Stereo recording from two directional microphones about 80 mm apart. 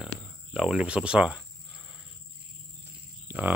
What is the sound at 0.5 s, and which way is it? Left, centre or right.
Speech, centre.